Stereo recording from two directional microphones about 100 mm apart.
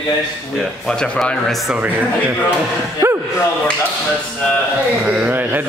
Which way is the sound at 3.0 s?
30° right (ahead or behind).